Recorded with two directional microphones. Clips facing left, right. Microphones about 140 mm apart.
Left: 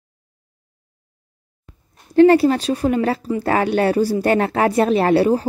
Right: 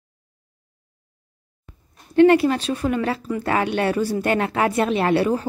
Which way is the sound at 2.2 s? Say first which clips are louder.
Left 3 dB; 35° left (ahead or behind).